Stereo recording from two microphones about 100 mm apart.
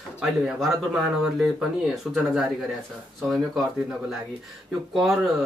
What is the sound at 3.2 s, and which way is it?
Speech, centre (ahead or behind).